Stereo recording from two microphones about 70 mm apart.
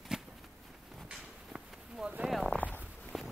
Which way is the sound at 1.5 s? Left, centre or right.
Centre.